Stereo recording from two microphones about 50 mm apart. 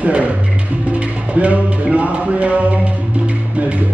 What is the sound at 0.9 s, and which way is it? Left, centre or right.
Music, right.